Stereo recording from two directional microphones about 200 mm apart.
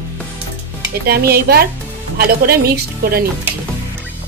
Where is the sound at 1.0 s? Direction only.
50° right (ahead or behind).